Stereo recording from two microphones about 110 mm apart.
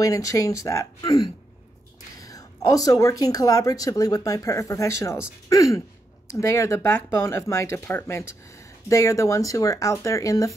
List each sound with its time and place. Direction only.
0.0 s speech: 30° left (ahead or behind)